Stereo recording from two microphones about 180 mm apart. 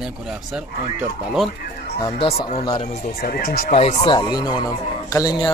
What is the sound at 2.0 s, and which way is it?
Speech, 25° left (ahead or behind).